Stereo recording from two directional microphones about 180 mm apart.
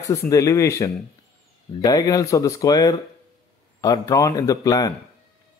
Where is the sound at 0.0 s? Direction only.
20° left (ahead or behind).